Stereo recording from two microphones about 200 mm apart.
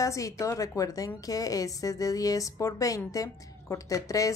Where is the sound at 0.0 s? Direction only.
15° left (ahead or behind).